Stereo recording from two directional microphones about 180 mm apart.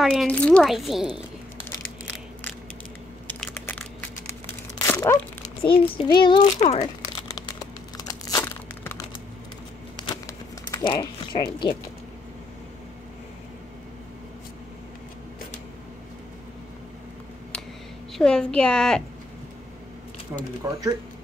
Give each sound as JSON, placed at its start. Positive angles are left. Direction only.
{"t": 0.0, "sound": "speech", "side_deg": 0}
{"t": 3.3, "sound": "crushing", "side_deg": 5}
{"t": 4.8, "sound": "a sound", "side_deg": 20}
{"t": 6.1, "sound": "speech", "side_deg": 25}
{"t": 8.1, "sound": "tearing", "side_deg": 20}
{"t": 10.7, "sound": "speech", "side_deg": 25}
{"t": 18.1, "sound": "speech", "side_deg": 5}
{"t": 20.3, "sound": "speech", "side_deg": -15}